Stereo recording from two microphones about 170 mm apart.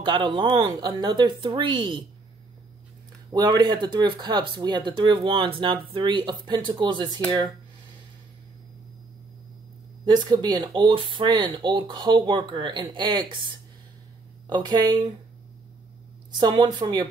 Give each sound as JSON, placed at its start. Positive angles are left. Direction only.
{"t": 0.0, "sound": "speech", "side_deg": -30}
{"t": 3.3, "sound": "speech", "side_deg": -25}
{"t": 10.0, "sound": "speech", "side_deg": -25}
{"t": 14.5, "sound": "speech", "side_deg": -25}
{"t": 16.3, "sound": "speech", "side_deg": -25}